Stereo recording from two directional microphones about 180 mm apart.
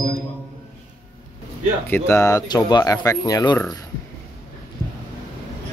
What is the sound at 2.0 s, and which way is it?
Speech, 15° left (ahead or behind).